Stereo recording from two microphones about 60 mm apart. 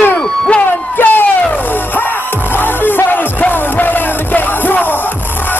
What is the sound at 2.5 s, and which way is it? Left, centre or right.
Music, left.